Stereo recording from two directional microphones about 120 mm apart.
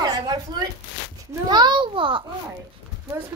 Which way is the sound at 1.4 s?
35° right (ahead or behind).